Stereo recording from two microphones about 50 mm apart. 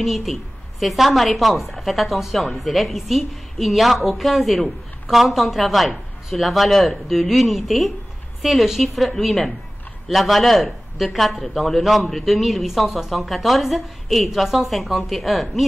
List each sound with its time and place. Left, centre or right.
0.0 s speech: centre